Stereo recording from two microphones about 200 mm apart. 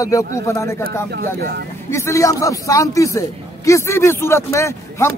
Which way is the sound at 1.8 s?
15° left (ahead or behind).